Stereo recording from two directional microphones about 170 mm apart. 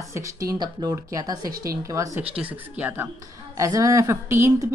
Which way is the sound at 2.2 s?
10° right (ahead or behind).